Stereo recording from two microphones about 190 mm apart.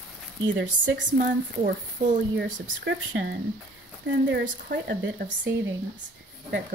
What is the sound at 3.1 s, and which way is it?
Speech, 65° right (ahead or behind).